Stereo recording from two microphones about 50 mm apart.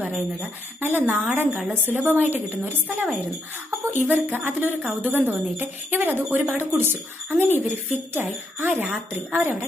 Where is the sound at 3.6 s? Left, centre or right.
Right.